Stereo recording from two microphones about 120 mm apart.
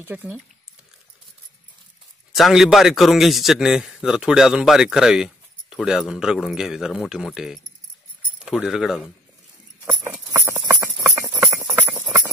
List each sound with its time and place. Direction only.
0.0 s speech: 15° right (ahead or behind)
2.3 s a man's voice: centre (ahead or behind)
10.2 s a sound: 25° right (ahead or behind)
11.4 s clip-clop: 25° right (ahead or behind)